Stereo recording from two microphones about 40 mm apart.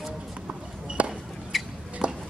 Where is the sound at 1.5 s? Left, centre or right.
Centre.